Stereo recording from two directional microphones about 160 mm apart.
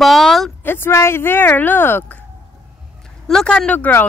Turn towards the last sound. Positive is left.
turn(degrees=10)  # may be behind; listen again after turning